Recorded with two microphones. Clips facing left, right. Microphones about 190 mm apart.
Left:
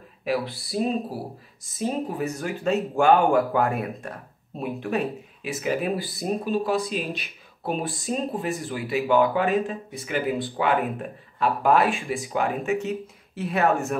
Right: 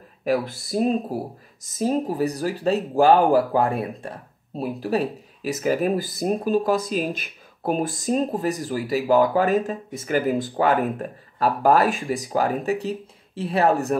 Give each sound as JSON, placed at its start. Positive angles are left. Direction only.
{"t": 0.2, "sound": "speech", "side_deg": -45}
{"t": 7.9, "sound": "speech", "side_deg": 0}
{"t": 8.3, "sound": "speech", "side_deg": -40}